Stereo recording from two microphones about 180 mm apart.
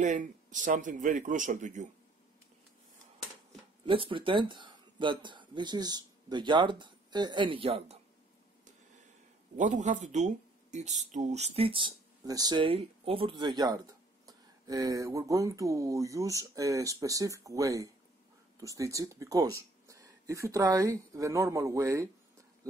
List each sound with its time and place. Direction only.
0.0 s a man's voice: 45° right (ahead or behind)
3.8 s speech: 30° right (ahead or behind)
9.6 s speech: 45° right (ahead or behind); by 22.1 s 15° right (ahead or behind)